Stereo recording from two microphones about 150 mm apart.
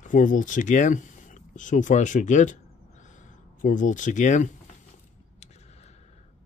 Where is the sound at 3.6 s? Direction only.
55° left (ahead or behind).